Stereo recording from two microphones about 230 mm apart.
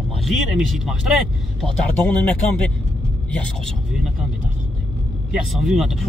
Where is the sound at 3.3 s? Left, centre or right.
Centre.